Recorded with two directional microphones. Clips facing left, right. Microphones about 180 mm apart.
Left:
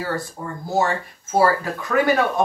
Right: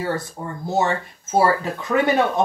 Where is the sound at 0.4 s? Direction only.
20° right (ahead or behind).